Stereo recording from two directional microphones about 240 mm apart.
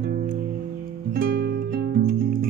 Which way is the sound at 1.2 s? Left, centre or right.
Right.